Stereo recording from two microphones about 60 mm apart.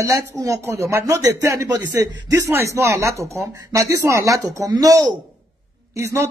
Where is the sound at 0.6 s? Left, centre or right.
Right.